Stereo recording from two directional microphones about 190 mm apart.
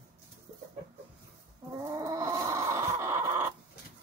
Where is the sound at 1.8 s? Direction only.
20° right (ahead or behind).